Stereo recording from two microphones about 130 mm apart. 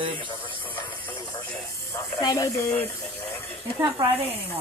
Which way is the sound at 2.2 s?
25° left (ahead or behind).